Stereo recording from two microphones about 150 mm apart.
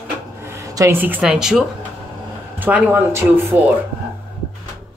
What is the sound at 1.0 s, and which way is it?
Speech, 10° right (ahead or behind).